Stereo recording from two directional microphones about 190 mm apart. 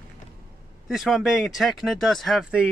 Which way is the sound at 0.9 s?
Centre (ahead or behind).